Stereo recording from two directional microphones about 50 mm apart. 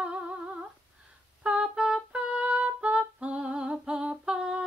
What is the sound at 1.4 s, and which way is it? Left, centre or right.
Music, centre.